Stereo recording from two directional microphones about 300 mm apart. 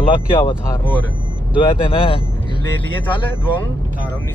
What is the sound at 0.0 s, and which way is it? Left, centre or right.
Speech, centre.